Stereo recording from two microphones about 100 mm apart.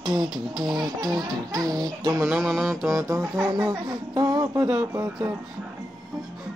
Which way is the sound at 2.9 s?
25° right (ahead or behind).